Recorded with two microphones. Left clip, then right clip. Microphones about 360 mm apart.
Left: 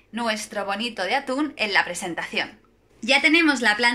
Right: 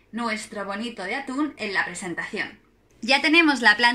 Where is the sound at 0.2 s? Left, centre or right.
Left.